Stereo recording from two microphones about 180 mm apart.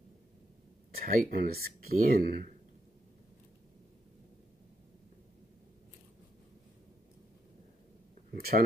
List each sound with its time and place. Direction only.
0.9 s speech: 55° right (ahead or behind)
8.4 s speech: 55° right (ahead or behind)